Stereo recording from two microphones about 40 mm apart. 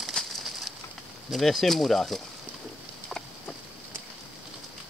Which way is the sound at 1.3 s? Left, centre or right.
Centre.